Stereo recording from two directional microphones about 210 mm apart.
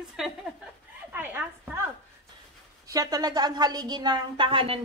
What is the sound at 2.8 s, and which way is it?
A woman's voice, 15° right (ahead or behind).